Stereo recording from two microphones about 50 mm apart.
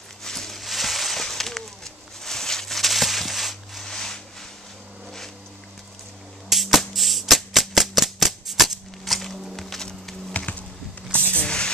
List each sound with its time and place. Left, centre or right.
0.2 s a sound: centre
3.8 s music: centre
6.5 s music: centre
10.3 s typing: left
11.1 s spray: left